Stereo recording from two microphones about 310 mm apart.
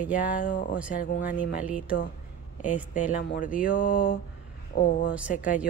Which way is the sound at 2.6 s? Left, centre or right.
Left.